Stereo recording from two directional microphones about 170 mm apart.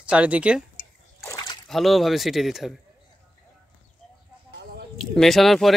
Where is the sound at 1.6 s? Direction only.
Centre (ahead or behind).